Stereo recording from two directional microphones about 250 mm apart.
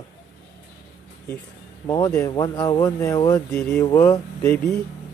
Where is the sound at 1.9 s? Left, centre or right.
Centre.